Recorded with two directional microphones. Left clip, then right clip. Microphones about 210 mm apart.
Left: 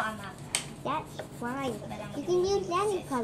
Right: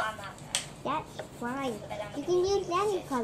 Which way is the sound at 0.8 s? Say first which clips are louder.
Even; centre (ahead or behind).